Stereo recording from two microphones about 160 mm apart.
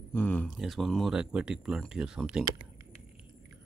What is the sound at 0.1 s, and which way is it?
Speech, 10° left (ahead or behind).